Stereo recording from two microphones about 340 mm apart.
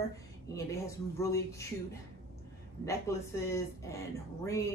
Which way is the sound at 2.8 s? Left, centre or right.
Centre.